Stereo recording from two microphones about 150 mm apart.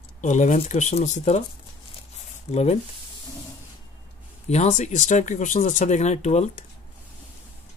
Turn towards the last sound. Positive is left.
turn(degrees=50)  # may be behind; listen again after turning